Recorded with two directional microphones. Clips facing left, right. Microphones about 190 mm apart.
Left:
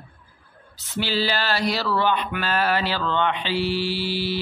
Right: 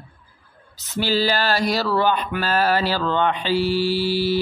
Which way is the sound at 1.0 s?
40° right (ahead or behind).